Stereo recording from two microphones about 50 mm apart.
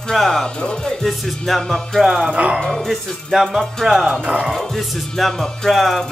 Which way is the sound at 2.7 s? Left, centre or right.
Centre.